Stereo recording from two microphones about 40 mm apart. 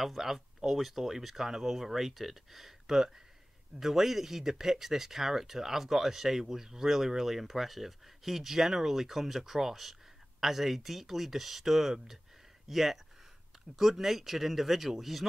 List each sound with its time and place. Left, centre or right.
0.0 s speech: centre